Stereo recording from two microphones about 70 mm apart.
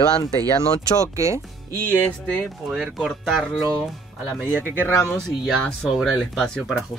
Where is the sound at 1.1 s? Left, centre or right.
Right.